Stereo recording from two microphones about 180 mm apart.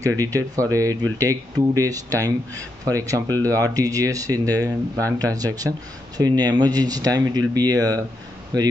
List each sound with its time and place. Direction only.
0.2 s speech: 15° right (ahead or behind)